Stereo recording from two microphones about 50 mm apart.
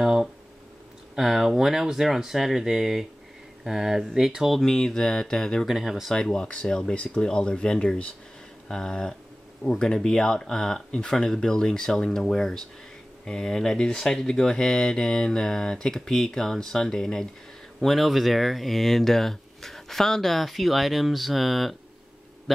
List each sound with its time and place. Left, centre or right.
0.0 s a sound: centre
1.1 s speech: centre
5.7 s speech: centre
6.0 s speech: centre
17.8 s speech: centre